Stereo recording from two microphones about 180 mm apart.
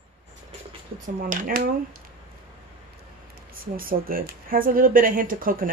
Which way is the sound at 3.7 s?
55° right (ahead or behind).